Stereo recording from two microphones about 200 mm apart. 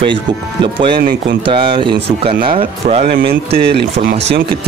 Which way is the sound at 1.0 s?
50° right (ahead or behind).